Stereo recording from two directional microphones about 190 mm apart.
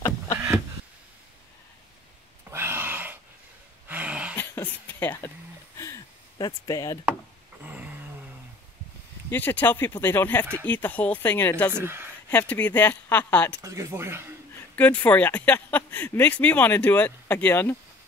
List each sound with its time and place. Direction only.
2.5 s a sound: 10° right (ahead or behind)
3.9 s cough: 5° right (ahead or behind)
4.4 s a sound: 10° left (ahead or behind)
7.6 s a sound: 5° right (ahead or behind)
9.3 s speech: 10° left (ahead or behind)
11.7 s speech: 10° right (ahead or behind)
12.3 s speech: 10° left (ahead or behind)
13.6 s speech: 15° right (ahead or behind)
14.8 s speech: 5° left (ahead or behind)